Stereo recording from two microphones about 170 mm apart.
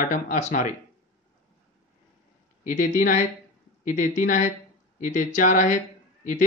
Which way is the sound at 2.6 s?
50° left (ahead or behind).